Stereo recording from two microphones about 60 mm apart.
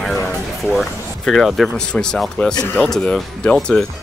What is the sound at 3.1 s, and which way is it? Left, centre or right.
Speech, centre.